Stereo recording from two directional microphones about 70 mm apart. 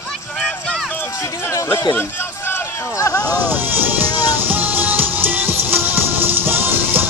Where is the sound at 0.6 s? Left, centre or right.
Centre.